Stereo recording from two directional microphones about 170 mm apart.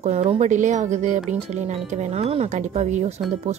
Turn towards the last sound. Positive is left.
turn(degrees=-45)  # may be behind; listen again after turning